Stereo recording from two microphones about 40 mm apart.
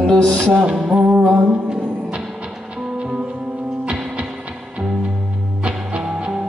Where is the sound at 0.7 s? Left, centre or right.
Right.